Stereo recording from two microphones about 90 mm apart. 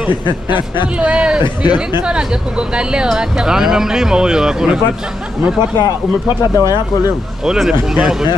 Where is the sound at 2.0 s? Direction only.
10° right (ahead or behind).